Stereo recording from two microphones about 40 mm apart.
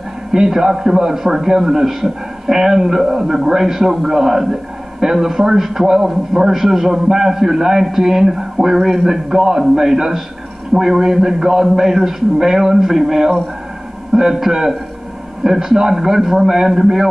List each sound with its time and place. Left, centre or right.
0.3 s a man's voice: centre